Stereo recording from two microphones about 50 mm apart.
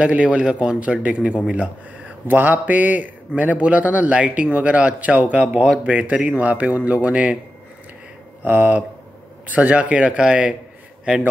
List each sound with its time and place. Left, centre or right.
0.0 s a man's voice: right
2.2 s a man's voice: right
8.5 s a man's voice: right